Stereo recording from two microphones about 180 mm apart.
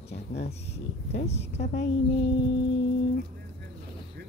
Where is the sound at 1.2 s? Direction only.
35° left (ahead or behind).